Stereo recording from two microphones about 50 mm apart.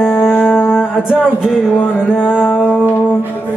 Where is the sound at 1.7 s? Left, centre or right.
Left.